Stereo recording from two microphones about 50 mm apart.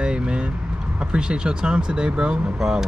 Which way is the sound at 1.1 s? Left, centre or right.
Centre.